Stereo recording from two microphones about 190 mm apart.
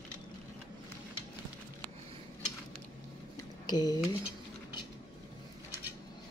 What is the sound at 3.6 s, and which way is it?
Speech, 20° left (ahead or behind).